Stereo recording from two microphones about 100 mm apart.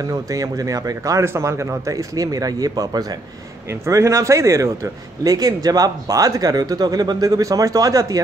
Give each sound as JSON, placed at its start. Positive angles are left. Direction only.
{"t": 0.0, "sound": "speech", "side_deg": -35}